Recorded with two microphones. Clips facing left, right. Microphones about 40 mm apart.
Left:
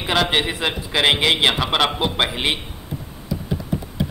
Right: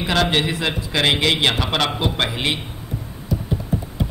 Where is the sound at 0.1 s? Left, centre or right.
Centre.